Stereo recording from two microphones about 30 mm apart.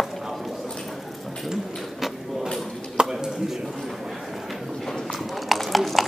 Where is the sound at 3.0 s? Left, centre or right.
Right.